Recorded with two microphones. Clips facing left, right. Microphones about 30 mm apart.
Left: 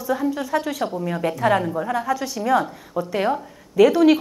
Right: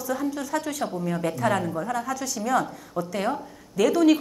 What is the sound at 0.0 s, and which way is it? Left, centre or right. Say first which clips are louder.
A woman's voice: left 5 dB; left.